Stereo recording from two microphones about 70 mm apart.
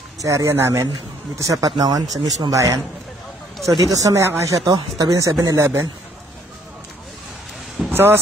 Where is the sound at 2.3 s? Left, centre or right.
Right.